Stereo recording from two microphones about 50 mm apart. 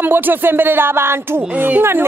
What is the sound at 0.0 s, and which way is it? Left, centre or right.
A woman's voice, right.